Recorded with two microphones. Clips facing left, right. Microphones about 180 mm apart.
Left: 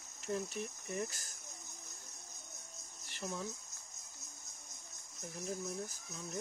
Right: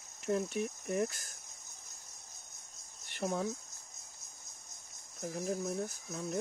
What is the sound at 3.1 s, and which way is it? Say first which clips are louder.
Speech: right 8 dB; 60° right (ahead or behind).